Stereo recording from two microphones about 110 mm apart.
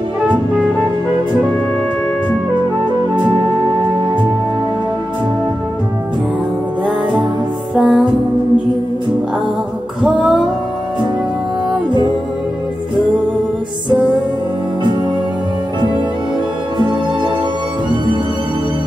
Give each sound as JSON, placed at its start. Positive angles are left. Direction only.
{"t": 7.7, "sound": "music", "side_deg": -5}
{"t": 10.0, "sound": "music", "side_deg": -5}
{"t": 16.7, "sound": "music", "side_deg": -45}